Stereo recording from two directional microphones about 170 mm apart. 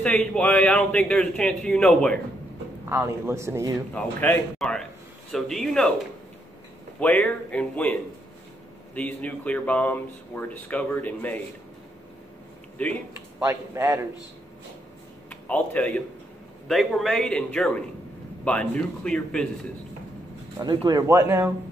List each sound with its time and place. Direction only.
0.0 s a man's voice: 5° left (ahead or behind)
2.9 s a man's voice: 15° right (ahead or behind)
3.9 s a man's voice: 10° left (ahead or behind)
7.0 s speech: 10° left (ahead or behind)
12.8 s speech: 10° left (ahead or behind)
13.4 s a man's voice: 20° right (ahead or behind)
15.2 s a man's voice: 10° left (ahead or behind)
20.5 s speech: 25° right (ahead or behind)